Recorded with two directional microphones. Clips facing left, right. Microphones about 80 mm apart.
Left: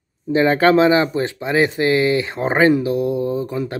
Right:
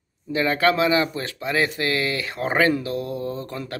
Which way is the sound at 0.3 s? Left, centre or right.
Left.